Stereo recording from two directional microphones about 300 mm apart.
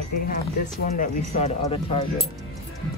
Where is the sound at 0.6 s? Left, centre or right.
Left.